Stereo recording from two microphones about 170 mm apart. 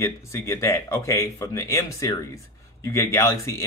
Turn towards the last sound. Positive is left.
turn(degrees=20)  # may be behind; listen again after turning